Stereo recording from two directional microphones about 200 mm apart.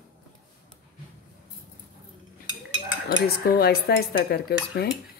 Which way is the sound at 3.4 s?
50° left (ahead or behind).